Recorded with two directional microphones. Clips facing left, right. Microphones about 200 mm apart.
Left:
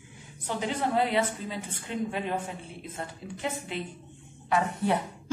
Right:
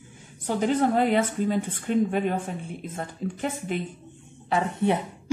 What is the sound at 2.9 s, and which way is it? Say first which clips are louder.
Speech: right 6 dB; 45° right (ahead or behind).